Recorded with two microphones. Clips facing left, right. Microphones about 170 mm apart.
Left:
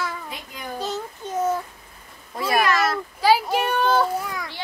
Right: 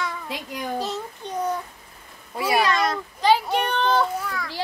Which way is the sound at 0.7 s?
Centre (ahead or behind).